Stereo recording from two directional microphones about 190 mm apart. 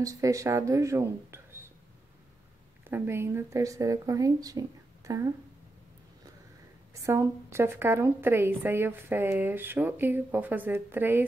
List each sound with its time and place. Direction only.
0.0 s speech: 15° right (ahead or behind)
2.8 s a woman's voice: 10° right (ahead or behind)
6.9 s a woman's voice: 15° right (ahead or behind)